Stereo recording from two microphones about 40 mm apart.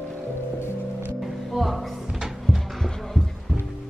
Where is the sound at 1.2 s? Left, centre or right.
Centre.